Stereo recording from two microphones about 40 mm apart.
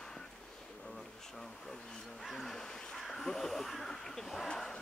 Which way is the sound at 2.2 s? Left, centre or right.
Centre.